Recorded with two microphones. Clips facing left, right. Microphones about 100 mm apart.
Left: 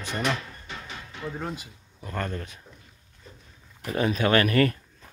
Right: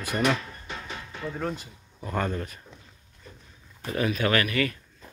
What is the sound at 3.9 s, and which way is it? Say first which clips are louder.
Speech: left 2 dB; 30° left (ahead or behind).